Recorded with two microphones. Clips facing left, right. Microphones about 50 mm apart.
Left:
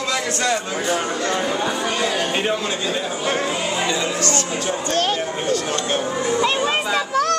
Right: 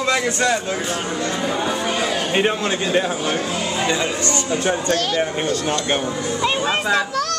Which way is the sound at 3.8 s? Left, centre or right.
Centre.